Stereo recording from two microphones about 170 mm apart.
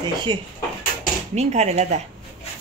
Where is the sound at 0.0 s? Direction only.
25° right (ahead or behind).